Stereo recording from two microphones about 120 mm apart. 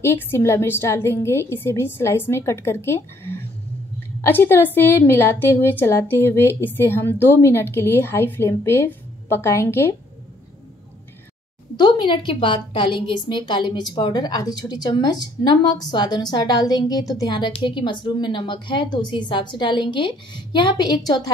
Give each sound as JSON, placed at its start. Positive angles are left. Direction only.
{"t": 0.0, "sound": "a woman's voice", "side_deg": 20}
{"t": 11.7, "sound": "a woman's voice", "side_deg": 40}